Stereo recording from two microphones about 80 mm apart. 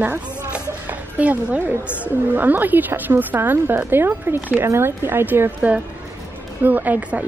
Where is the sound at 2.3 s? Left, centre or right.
Right.